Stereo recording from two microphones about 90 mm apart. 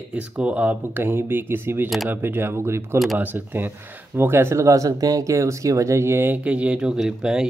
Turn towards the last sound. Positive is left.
turn(degrees=-5)  # may be behind; listen again after turning